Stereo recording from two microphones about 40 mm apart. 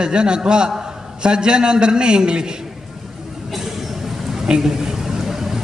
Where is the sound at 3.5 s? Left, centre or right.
Centre.